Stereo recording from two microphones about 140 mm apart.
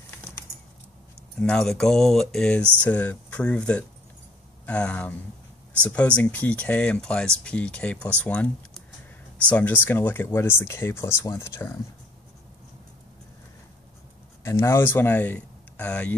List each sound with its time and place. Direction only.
1.4 s speech: 5° left (ahead or behind)
14.4 s speech: 20° left (ahead or behind)